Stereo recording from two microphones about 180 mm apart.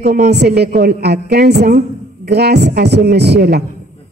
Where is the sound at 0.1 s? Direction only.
65° right (ahead or behind).